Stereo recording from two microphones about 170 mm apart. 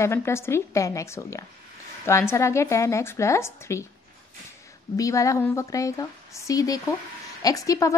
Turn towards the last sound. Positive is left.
turn(degrees=20)  # may be behind; listen again after turning